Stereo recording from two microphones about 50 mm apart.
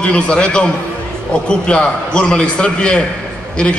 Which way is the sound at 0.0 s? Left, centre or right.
Left.